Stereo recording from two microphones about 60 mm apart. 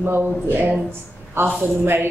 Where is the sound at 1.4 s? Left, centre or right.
Right.